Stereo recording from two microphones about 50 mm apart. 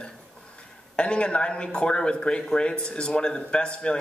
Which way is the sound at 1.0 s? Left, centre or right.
Left.